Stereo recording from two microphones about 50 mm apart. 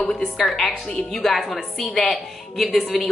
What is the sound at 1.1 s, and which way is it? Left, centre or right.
A woman's voice, centre.